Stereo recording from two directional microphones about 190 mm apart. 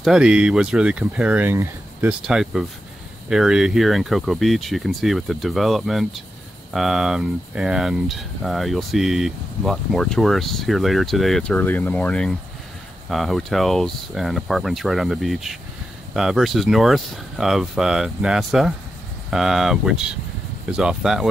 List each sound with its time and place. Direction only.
0.0 s speech: 5° right (ahead or behind)